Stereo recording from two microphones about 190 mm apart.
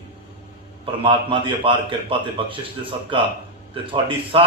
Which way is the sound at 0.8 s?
25° right (ahead or behind).